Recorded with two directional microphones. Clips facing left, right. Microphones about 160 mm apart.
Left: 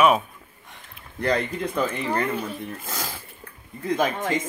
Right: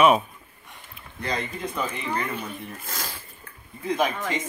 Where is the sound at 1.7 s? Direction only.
50° left (ahead or behind).